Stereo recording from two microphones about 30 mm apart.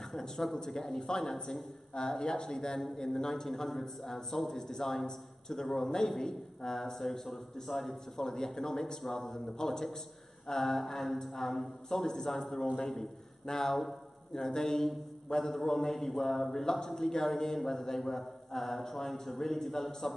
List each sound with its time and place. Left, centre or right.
0.7 s a man's voice: centre
2.0 s speech: left
2.8 s a man's voice: centre
3.2 s a man's voice: centre
8.2 s a man's voice: centre